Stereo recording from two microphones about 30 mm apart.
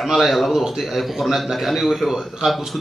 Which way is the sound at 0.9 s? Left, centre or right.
Centre.